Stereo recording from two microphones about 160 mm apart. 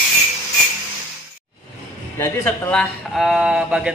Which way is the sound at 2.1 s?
10° left (ahead or behind).